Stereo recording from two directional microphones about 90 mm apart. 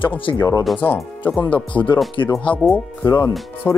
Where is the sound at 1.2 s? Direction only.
15° left (ahead or behind).